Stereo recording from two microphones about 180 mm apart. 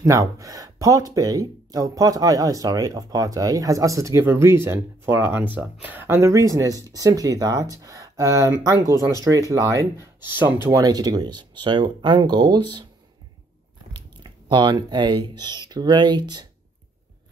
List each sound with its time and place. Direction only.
0.0 s speech: 20° right (ahead or behind)
13.9 s speech: 25° right (ahead or behind)